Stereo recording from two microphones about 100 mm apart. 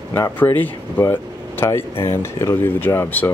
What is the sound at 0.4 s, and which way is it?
Speech, 20° left (ahead or behind).